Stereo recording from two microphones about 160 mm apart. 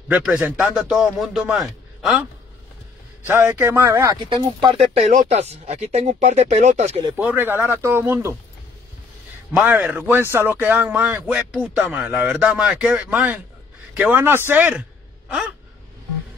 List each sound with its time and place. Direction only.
0.1 s a man's voice: 10° right (ahead or behind)
3.3 s speech: 15° right (ahead or behind)
4.3 s speech: 30° right (ahead or behind)
4.9 s speech: 45° right (ahead or behind)
7.2 s speech: 10° right (ahead or behind)
9.6 s speech: 10° right (ahead or behind)